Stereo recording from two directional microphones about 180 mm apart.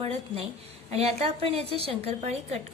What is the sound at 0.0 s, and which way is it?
A woman's voice, 35° right (ahead or behind).